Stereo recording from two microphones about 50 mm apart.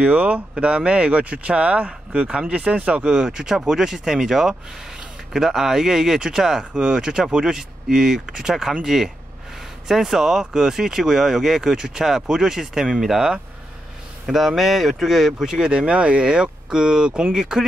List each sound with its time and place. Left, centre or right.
0.0 s speech: right
3.2 s speech: centre
15.7 s speech: right